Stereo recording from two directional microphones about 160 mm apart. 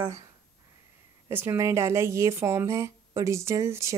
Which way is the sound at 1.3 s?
15° right (ahead or behind).